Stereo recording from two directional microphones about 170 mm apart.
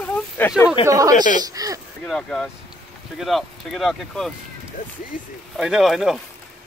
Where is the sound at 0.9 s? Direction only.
20° right (ahead or behind).